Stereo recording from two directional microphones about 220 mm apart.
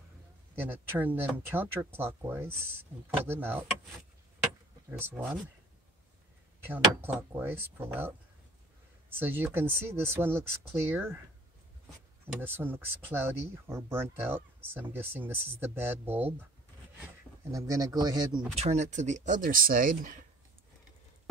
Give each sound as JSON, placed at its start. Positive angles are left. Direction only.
{"t": 0.9, "sound": "speech", "side_deg": -10}
{"t": 4.9, "sound": "speech", "side_deg": -10}
{"t": 6.7, "sound": "speech", "side_deg": -10}
{"t": 9.1, "sound": "speech", "side_deg": -10}
{"t": 12.4, "sound": "speech", "side_deg": -10}
{"t": 17.5, "sound": "speech", "side_deg": -15}